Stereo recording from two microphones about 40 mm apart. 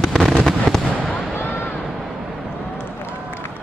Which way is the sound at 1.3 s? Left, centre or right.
Left.